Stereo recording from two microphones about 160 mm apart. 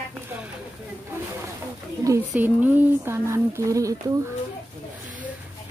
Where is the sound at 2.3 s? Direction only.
10° right (ahead or behind).